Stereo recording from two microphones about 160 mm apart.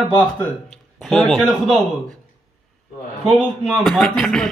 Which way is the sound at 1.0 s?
Centre (ahead or behind).